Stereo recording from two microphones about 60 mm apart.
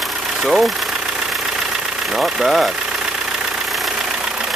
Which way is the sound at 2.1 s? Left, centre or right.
Centre.